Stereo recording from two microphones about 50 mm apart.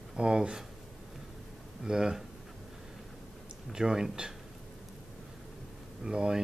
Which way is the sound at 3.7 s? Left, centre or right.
Centre.